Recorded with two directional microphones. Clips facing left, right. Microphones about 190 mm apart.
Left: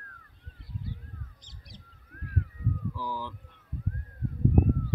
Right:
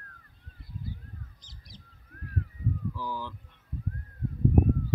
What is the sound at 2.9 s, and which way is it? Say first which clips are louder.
Speech: even; 10° left (ahead or behind).